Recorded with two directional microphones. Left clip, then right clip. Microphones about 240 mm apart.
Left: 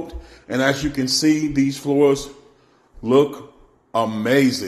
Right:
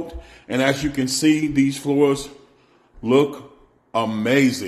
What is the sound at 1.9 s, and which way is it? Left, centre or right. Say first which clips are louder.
A man's voice: left 4 dB; centre.